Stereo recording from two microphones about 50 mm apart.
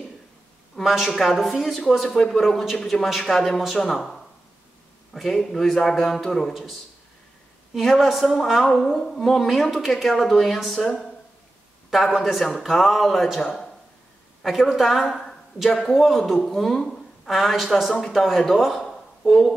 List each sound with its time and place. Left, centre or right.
0.8 s speech: centre
11.9 s speech: centre
16.4 s a sound: centre
17.3 s speech: centre